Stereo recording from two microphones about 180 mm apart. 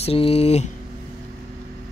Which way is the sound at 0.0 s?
35° left (ahead or behind).